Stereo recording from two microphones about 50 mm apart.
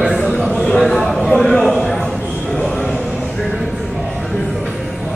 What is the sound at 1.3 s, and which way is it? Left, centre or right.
Speech, centre.